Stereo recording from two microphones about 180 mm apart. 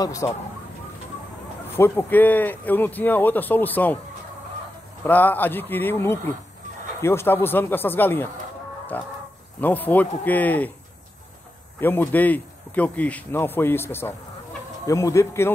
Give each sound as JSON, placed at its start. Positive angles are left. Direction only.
{"t": 0.0, "sound": "speech", "side_deg": 20}
{"t": 1.8, "sound": "speech", "side_deg": 10}
{"t": 5.0, "sound": "speech", "side_deg": 10}
{"t": 11.8, "sound": "speech", "side_deg": 10}